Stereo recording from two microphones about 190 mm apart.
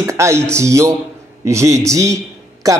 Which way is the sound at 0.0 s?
15° right (ahead or behind).